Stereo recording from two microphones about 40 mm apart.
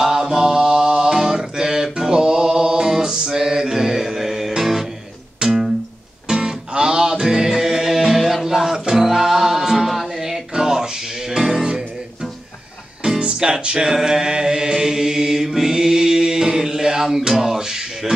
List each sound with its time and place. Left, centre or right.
0.0 s mantra: centre
2.9 s music: centre
8.7 s music: centre
9.0 s music: centre